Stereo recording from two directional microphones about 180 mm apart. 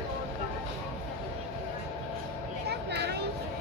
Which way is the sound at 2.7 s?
65° right (ahead or behind).